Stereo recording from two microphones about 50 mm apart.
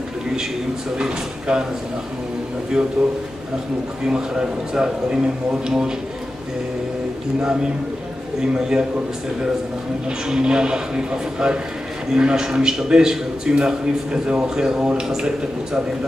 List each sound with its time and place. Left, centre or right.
0.9 s a man's voice: centre
3.0 s a man's voice: centre
8.5 s a man's voice: centre
10.3 s a man's voice: centre